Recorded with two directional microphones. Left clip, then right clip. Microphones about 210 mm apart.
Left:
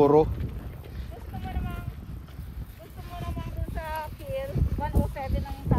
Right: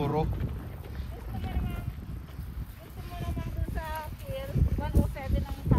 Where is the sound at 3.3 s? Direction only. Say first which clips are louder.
Left 1 dB; 40° left (ahead or behind).